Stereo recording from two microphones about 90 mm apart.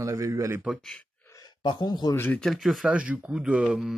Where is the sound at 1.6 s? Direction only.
55° left (ahead or behind).